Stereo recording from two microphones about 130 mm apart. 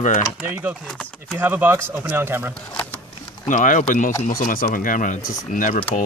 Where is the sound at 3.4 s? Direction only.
75° left (ahead or behind).